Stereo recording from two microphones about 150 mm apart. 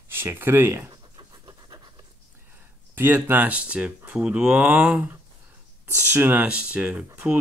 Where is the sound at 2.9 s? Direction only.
15° right (ahead or behind).